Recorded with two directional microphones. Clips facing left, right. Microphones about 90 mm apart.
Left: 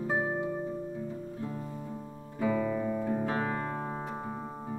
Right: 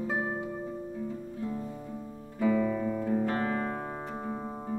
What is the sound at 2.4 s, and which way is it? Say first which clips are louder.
Guitar: right 2 dB; 10° left (ahead or behind).